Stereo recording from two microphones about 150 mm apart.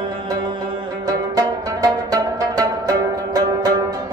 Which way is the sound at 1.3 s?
25° right (ahead or behind).